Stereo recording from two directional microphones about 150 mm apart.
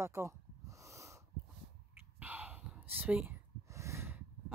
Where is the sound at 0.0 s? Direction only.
20° right (ahead or behind).